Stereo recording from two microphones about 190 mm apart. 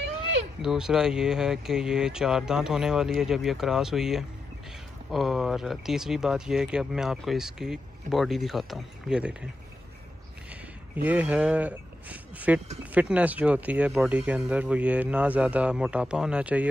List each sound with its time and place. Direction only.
0.6 s speech: centre (ahead or behind)
10.5 s speech: 10° right (ahead or behind)